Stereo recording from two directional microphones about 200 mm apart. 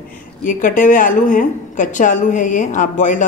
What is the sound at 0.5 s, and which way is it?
A woman's voice, 40° left (ahead or behind).